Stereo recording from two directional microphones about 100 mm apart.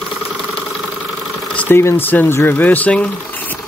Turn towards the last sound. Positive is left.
turn(degrees=15)  # may be behind; listen again after turning